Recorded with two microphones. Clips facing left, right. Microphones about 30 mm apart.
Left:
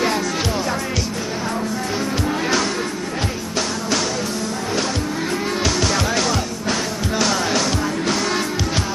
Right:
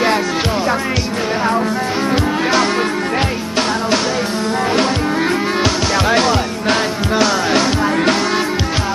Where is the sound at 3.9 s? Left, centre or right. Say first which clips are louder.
Right 5 dB; right.